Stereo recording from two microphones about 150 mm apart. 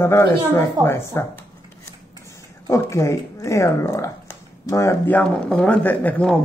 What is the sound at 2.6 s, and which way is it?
Speech, 20° left (ahead or behind).